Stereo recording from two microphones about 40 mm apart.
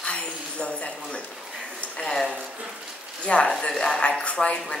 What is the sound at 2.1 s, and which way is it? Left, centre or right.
Speech, centre.